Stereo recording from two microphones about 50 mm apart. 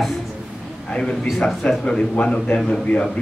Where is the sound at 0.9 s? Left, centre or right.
Centre.